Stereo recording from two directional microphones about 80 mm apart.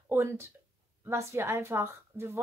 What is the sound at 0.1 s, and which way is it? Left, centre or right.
A woman's voice, right.